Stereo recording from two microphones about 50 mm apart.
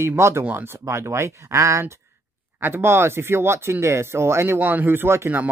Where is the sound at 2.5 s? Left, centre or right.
Right.